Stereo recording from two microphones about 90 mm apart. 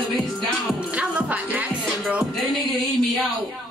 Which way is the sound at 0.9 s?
15° right (ahead or behind).